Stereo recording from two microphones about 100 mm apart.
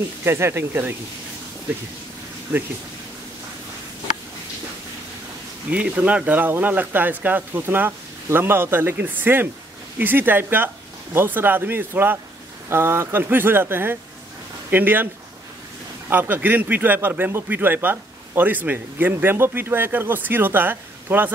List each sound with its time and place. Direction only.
0.2 s a man's voice: 25° right (ahead or behind)
5.7 s a man's voice: 15° right (ahead or behind)
16.1 s a man's voice: 20° right (ahead or behind)